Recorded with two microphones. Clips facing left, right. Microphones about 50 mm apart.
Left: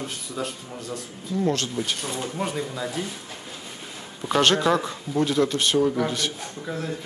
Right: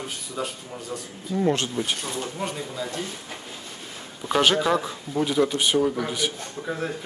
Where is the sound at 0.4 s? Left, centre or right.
Centre.